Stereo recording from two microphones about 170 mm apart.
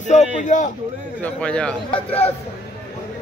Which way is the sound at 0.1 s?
45° left (ahead or behind).